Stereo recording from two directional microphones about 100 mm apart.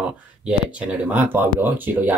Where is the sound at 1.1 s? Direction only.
20° right (ahead or behind).